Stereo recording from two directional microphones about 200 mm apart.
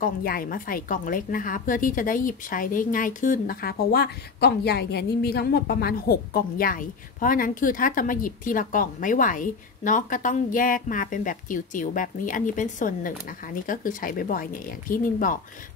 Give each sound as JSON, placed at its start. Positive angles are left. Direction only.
{"t": 0.0, "sound": "a woman's voice", "side_deg": 45}